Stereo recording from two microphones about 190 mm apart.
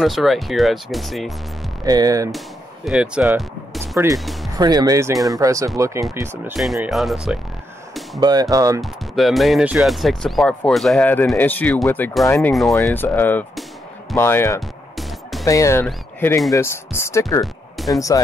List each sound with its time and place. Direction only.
0.0 s speech: centre (ahead or behind)
1.9 s speech: 20° right (ahead or behind)
2.3 s music: centre (ahead or behind)
3.9 s speech: 15° right (ahead or behind)
6.6 s speech: centre (ahead or behind)
8.2 s speech: 20° right (ahead or behind)
8.8 s speech: centre (ahead or behind)
15.0 s music: centre (ahead or behind)
15.4 s speech: 15° left (ahead or behind)